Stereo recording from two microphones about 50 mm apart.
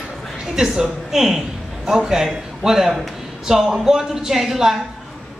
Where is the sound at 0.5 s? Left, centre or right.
Centre.